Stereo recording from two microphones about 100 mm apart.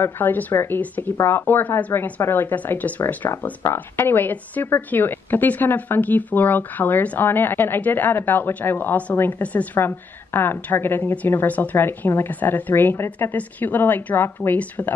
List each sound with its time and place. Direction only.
0.0 s a woman's voice: 20° left (ahead or behind)